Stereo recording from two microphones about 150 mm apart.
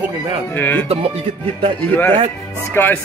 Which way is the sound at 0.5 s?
15° left (ahead or behind).